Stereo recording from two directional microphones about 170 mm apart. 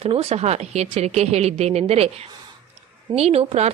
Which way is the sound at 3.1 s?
35° right (ahead or behind).